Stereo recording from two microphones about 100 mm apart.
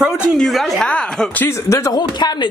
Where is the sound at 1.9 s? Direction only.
45° left (ahead or behind).